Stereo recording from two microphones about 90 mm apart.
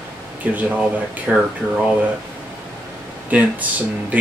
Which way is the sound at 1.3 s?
5° right (ahead or behind).